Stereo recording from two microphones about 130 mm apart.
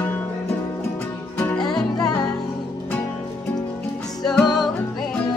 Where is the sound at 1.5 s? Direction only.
5° left (ahead or behind).